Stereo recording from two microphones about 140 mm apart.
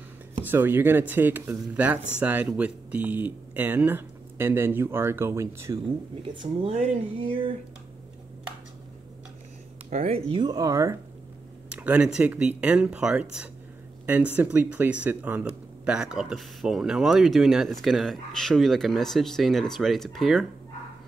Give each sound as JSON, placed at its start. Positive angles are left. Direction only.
{"t": 0.5, "sound": "speech", "side_deg": -15}
{"t": 6.2, "sound": "speech", "side_deg": -35}
{"t": 9.8, "sound": "speech", "side_deg": -55}
{"t": 11.7, "sound": "speech", "side_deg": -10}